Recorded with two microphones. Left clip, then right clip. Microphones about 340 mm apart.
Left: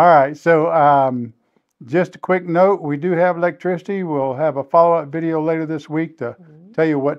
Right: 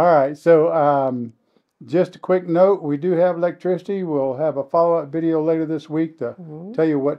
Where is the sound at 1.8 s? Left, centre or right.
Left.